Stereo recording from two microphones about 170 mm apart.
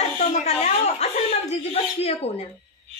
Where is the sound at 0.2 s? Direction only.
40° left (ahead or behind).